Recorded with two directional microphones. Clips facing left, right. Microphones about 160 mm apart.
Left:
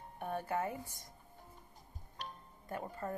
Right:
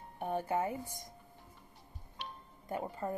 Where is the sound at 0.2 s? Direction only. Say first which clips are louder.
Right 3 dB; 20° right (ahead or behind).